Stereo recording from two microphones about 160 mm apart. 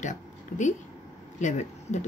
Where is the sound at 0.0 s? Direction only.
50° left (ahead or behind).